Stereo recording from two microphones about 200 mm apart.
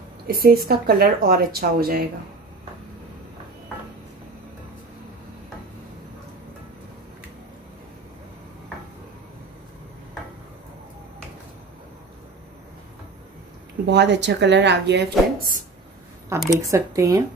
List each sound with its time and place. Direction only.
0.3 s speech: 50° right (ahead or behind)
13.8 s speech: 60° right (ahead or behind)
16.4 s speech: 15° right (ahead or behind)